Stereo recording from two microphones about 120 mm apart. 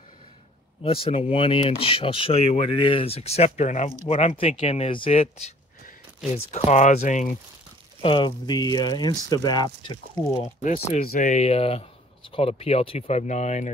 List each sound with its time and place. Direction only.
0.8 s speech: 50° left (ahead or behind); by 3.9 s 75° left (ahead or behind)
4.1 s speech: 60° left (ahead or behind)
6.3 s speech: 75° left (ahead or behind)
8.0 s speech: 45° left (ahead or behind)
10.3 s speech: 65° left (ahead or behind)